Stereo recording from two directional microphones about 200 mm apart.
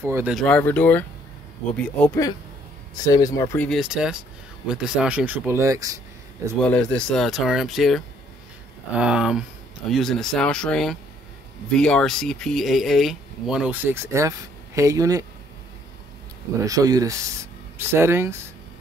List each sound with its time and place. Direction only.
0.0 s speech: 10° right (ahead or behind); by 2.2 s 5° left (ahead or behind)
3.1 s speech: 15° left (ahead or behind); by 5.9 s 15° right (ahead or behind)
6.6 s speech: 5° left (ahead or behind); by 15.2 s 15° right (ahead or behind)
16.6 s speech: 15° right (ahead or behind)